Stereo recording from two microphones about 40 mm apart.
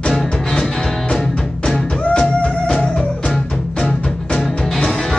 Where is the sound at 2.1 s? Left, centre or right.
Left.